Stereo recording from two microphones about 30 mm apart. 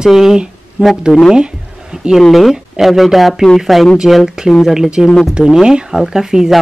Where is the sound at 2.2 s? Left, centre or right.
Centre.